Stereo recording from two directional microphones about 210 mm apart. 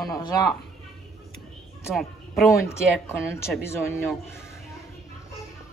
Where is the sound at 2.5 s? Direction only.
15° left (ahead or behind).